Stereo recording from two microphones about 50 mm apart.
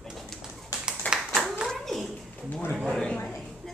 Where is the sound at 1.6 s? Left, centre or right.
Centre.